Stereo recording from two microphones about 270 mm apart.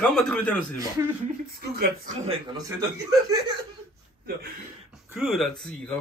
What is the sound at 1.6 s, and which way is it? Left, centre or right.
Speech, right.